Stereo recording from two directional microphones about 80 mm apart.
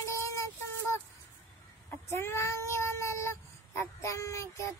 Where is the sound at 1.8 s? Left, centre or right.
Left.